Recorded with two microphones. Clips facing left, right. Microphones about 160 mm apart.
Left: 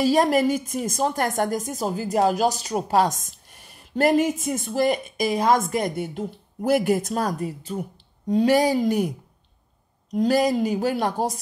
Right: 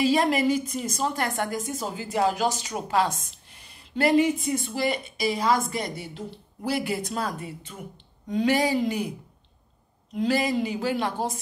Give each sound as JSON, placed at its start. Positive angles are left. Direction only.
{"t": 0.0, "sound": "speech", "side_deg": 45}
{"t": 10.1, "sound": "speech", "side_deg": 40}